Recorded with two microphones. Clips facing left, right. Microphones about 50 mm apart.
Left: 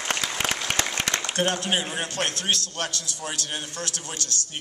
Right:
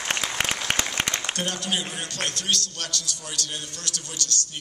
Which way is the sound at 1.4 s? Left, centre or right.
Left.